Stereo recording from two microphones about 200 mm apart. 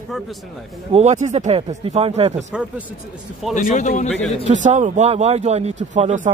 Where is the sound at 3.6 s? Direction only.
40° left (ahead or behind).